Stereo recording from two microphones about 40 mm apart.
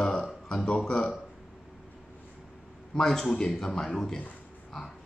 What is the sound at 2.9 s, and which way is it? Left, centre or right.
Speech, centre.